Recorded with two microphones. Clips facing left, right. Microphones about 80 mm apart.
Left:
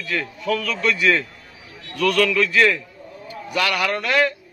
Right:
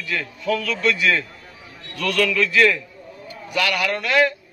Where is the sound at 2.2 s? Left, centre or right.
Left.